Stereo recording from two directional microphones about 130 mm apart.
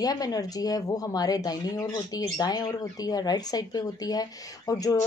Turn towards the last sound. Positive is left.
turn(degrees=25)  # may be behind; listen again after turning